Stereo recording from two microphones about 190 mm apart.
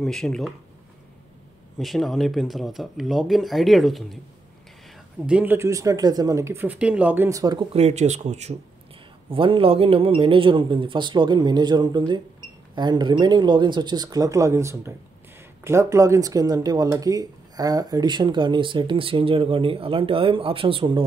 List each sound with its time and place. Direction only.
0.0 s speech: centre (ahead or behind)
1.8 s speech: centre (ahead or behind)
5.2 s speech: 10° right (ahead or behind)
7.7 s speech: 35° right (ahead or behind)